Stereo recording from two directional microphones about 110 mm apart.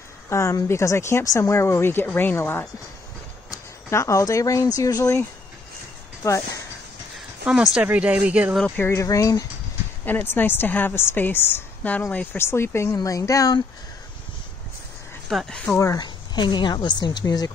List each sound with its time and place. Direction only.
0.3 s a woman's voice: 25° left (ahead or behind)
6.2 s a woman's voice: 25° left (ahead or behind)
7.4 s speech: 5° right (ahead or behind)
8.7 s a woman's voice: 25° left (ahead or behind)
10.0 s a woman's voice: 20° left (ahead or behind)
15.2 s speech: 5° left (ahead or behind)
16.0 s speech: 40° left (ahead or behind)